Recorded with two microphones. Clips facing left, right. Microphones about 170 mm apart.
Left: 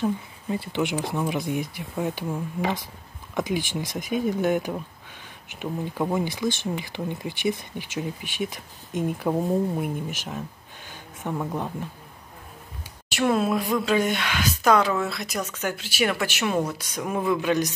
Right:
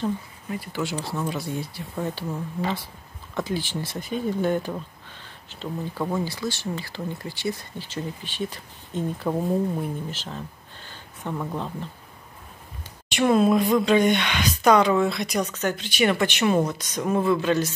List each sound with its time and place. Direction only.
0.5 s speech: 25° left (ahead or behind)
13.1 s speech: centre (ahead or behind)